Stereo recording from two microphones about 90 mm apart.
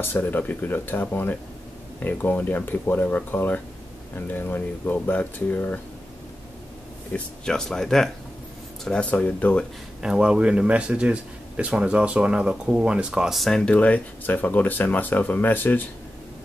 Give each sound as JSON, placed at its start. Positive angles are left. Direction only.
{"t": 0.0, "sound": "speech", "side_deg": 20}
{"t": 7.1, "sound": "speech", "side_deg": 10}
{"t": 9.0, "sound": "speech", "side_deg": 15}
{"t": 10.0, "sound": "speech", "side_deg": -10}